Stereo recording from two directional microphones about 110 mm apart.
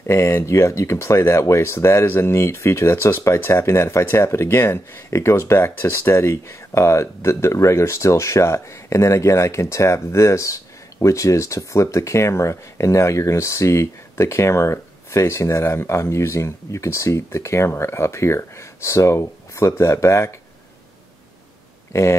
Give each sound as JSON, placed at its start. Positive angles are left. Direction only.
{"t": 0.0, "sound": "speech", "side_deg": 25}